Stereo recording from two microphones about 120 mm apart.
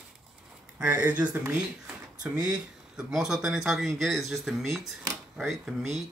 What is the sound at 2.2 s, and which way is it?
Speech, 5° right (ahead or behind).